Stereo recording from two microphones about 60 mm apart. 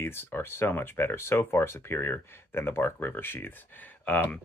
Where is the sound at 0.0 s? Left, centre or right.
Left.